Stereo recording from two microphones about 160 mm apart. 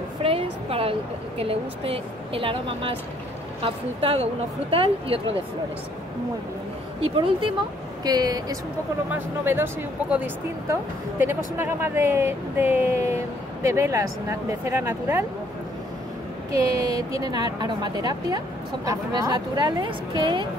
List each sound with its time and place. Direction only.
0.2 s a sound: 35° right (ahead or behind)
1.4 s speech: 35° right (ahead or behind)
7.2 s a woman's voice: 30° right (ahead or behind)
9.1 s speech: 15° right (ahead or behind)
16.5 s a woman's voice: 25° right (ahead or behind)